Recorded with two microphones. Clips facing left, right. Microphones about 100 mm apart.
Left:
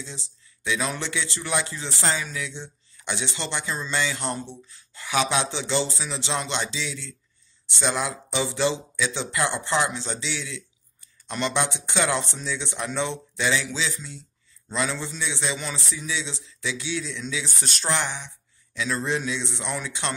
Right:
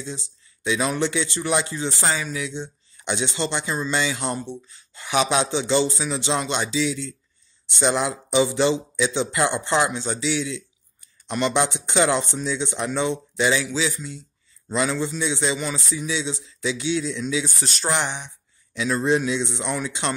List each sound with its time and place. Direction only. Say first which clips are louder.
0.0 s speech: right 6 dB; 15° right (ahead or behind)
14.7 s speech: right 5 dB; 15° right (ahead or behind)
17.6 s speech: right 3 dB; centre (ahead or behind)
17.8 s speech: right 2 dB; 20° right (ahead or behind)